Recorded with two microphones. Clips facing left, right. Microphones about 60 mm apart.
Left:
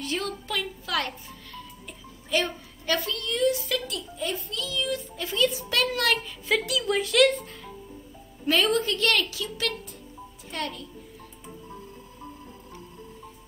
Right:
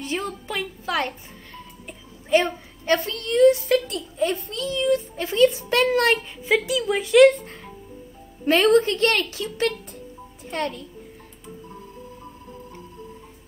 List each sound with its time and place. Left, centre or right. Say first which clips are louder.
0.6 s music: right 4 dB; right
2.4 s a woman's voice: right 4 dB; right
6.4 s speech: right 4 dB; centre
8.5 s a woman's voice: right 7 dB; right